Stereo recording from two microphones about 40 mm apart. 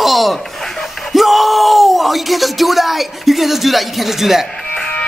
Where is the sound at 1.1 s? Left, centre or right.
Centre.